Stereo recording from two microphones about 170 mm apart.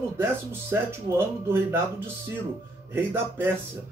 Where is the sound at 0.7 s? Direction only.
15° right (ahead or behind).